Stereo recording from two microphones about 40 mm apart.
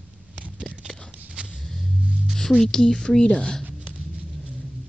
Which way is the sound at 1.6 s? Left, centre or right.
Centre.